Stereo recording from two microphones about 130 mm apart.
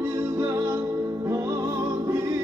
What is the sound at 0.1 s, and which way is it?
Music, 25° right (ahead or behind).